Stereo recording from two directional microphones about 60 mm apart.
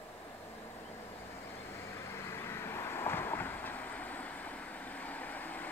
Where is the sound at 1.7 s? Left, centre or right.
Left.